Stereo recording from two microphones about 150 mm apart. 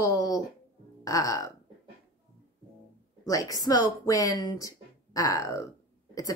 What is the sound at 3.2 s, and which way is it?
A woman's voice, 25° left (ahead or behind).